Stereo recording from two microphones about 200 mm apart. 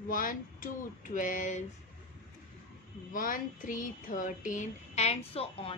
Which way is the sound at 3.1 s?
45° left (ahead or behind).